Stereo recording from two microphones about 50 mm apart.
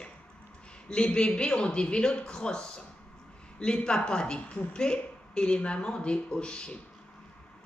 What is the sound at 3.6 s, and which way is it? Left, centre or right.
Speech, centre.